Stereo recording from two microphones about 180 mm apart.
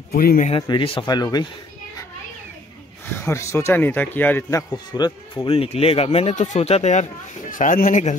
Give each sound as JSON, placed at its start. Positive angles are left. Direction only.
{"t": 0.1, "sound": "speech", "side_deg": 55}
{"t": 0.5, "sound": "speech", "side_deg": 30}
{"t": 3.2, "sound": "a man's voice", "side_deg": 15}